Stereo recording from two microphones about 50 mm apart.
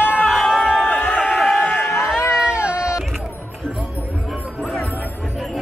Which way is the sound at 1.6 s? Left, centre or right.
Left.